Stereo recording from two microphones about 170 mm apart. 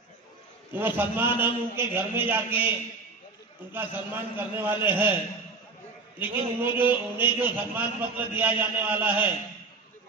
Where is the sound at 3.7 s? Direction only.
10° right (ahead or behind).